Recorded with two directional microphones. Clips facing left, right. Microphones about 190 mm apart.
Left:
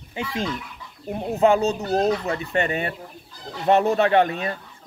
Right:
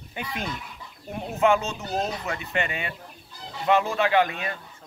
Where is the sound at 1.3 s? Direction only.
35° left (ahead or behind).